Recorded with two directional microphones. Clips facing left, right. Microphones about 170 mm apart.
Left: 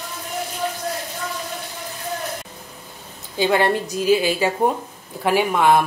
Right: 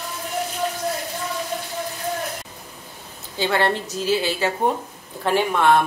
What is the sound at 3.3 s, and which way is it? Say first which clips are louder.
A woman's voice: left 3 dB; 15° left (ahead or behind).